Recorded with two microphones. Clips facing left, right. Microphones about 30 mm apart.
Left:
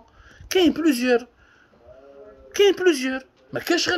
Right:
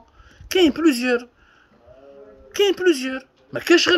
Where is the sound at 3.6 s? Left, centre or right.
Right.